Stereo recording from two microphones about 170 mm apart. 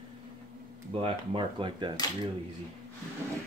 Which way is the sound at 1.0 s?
30° right (ahead or behind).